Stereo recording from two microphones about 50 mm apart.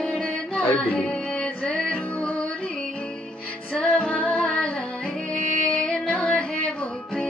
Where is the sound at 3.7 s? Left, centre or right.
Left.